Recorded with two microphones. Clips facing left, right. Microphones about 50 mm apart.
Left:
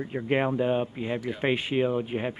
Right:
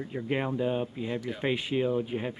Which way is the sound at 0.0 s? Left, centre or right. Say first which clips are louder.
Left 5 dB; left.